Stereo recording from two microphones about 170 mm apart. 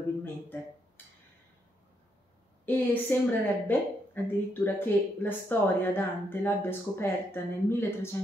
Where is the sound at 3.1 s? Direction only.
10° left (ahead or behind).